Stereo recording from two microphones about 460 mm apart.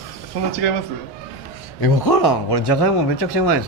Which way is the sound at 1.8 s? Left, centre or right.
Left.